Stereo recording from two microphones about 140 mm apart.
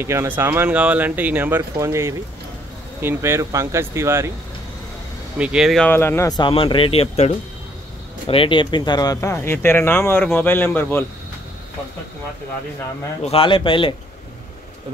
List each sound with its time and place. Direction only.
0.0 s speech: 20° right (ahead or behind)
5.4 s speech: 5° right (ahead or behind)
5.9 s speech: 15° left (ahead or behind)
6.5 s speech: 40° left (ahead or behind); by 11.1 s 15° left (ahead or behind)
13.2 s speech: 40° left (ahead or behind)